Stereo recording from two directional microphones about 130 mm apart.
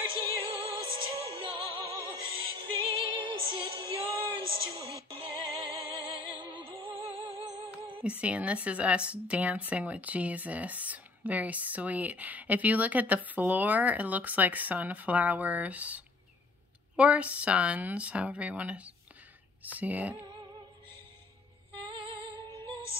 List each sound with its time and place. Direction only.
0.1 s music: 45° right (ahead or behind)
2.9 s music: 45° right (ahead or behind)
8.0 s speech: 10° right (ahead or behind)